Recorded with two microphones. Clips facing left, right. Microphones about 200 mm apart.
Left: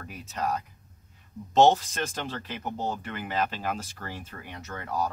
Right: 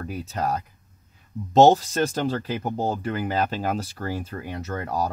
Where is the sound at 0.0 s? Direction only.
40° right (ahead or behind).